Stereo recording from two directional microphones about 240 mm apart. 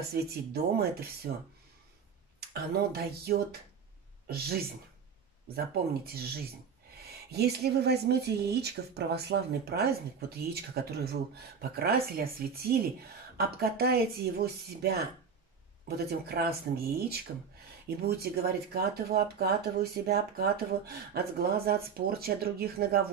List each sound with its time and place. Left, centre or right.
0.1 s speech: right
2.5 s speech: right
6.0 s speech: right
16.0 s speech: right